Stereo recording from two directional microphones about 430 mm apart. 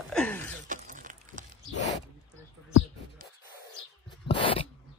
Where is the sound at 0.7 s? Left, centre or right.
Centre.